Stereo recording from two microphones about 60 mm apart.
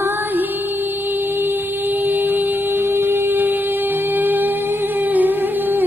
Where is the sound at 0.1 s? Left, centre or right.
Right.